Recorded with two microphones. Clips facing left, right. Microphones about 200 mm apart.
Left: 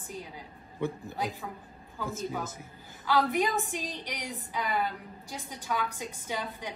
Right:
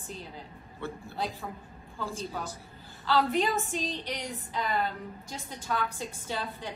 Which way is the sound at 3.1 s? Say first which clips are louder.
Even; 15° left (ahead or behind).